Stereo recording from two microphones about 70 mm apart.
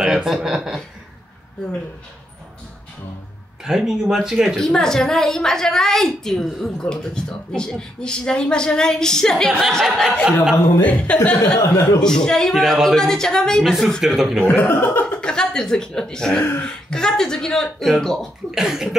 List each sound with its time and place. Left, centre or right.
0.0 s speech: centre
3.6 s speech: centre
4.6 s a woman's voice: centre
10.8 s speech: left
11.5 s speech: left
12.0 s a woman's voice: centre
14.4 s speech: left
15.1 s a woman's voice: centre
18.5 s speech: centre